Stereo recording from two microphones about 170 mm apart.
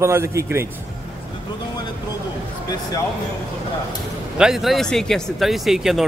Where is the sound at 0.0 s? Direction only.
15° right (ahead or behind).